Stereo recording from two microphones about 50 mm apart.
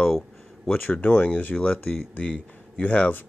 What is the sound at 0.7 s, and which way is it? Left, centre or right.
Speech, left.